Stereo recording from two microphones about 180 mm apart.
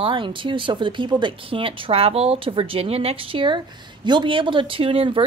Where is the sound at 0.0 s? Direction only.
25° right (ahead or behind).